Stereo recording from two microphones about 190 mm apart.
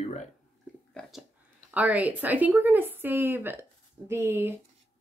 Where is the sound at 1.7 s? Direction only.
10° right (ahead or behind).